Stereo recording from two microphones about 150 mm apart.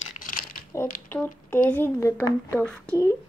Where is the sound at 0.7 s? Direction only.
15° left (ahead or behind).